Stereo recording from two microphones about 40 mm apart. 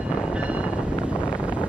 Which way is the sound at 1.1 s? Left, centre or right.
Right.